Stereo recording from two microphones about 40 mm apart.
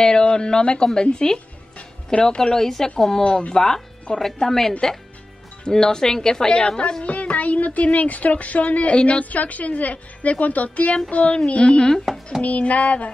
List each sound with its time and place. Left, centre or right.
0.0 s speech: left
3.3 s speech: left
3.5 s speech: centre; by 8.9 s left
8.9 s speech: left
9.2 s speech: left